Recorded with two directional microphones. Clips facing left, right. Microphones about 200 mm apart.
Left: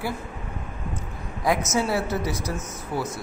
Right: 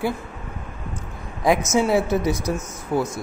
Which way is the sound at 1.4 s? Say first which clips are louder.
Right 5 dB; 20° right (ahead or behind).